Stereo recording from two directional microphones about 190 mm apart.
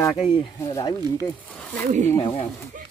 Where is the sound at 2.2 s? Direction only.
25° left (ahead or behind).